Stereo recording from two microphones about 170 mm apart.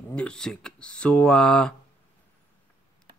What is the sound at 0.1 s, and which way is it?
Speech, 5° left (ahead or behind).